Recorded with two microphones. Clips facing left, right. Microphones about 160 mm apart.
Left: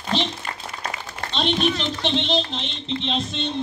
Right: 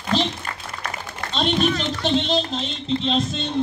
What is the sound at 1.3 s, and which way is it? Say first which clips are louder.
A man's voice: right 1 dB; 45° right (ahead or behind).